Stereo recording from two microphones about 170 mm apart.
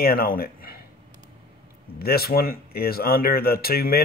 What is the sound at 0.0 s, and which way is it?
Speech, 60° left (ahead or behind).